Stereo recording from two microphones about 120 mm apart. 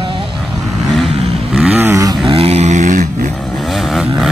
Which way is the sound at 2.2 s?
55° right (ahead or behind).